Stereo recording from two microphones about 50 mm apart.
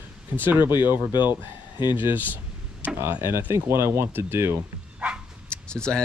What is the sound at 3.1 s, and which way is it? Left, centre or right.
Speech, right.